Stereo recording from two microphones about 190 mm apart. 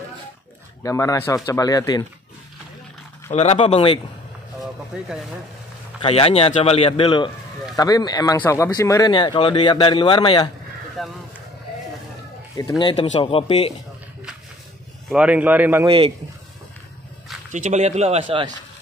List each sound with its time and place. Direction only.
0.8 s speech: 15° left (ahead or behind)
3.3 s speech: 35° left (ahead or behind)
4.6 s vehicle: centre (ahead or behind)
5.9 s speech: 30° left (ahead or behind)
11.0 s speech: centre (ahead or behind)
12.5 s speech: 20° left (ahead or behind)
15.0 s a man's voice: 5° right (ahead or behind)
17.5 s speech: 40° right (ahead or behind)